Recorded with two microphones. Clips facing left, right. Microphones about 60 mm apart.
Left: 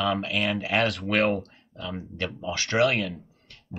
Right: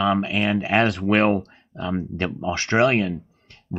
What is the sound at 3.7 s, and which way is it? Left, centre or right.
Music, right.